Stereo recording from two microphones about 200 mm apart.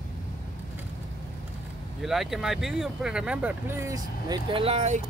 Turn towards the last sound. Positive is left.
turn(degrees=-35)  # may be behind; listen again after turning